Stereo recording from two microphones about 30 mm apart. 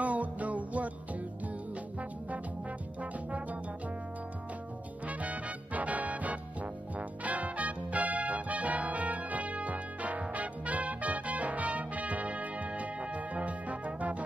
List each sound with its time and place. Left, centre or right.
0.0 s music: right
3.0 s music: right
5.0 s music: right